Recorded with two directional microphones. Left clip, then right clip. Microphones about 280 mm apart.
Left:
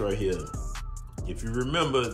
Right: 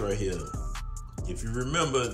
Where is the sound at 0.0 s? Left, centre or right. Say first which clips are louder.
Left 3 dB; centre.